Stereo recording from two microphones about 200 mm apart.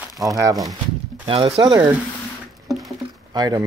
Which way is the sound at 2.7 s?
Centre (ahead or behind).